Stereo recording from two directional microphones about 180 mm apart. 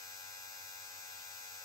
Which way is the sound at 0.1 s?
20° left (ahead or behind).